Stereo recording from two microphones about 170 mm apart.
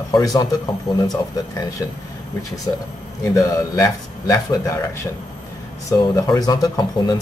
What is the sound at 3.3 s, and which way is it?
Speech, 20° left (ahead or behind).